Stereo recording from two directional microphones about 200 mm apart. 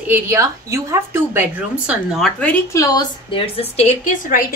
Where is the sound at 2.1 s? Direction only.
5° left (ahead or behind); by 4.4 s 35° left (ahead or behind).